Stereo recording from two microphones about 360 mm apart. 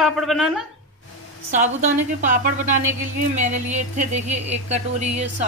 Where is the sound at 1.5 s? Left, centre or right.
Centre.